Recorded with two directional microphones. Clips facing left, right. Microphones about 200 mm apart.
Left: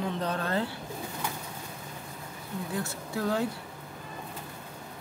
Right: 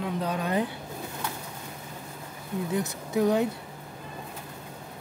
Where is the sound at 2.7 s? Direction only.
20° right (ahead or behind).